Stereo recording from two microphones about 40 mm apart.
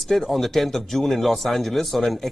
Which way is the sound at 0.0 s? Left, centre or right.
Centre.